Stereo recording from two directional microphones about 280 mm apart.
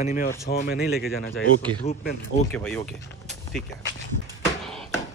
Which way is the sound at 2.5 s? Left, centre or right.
Centre.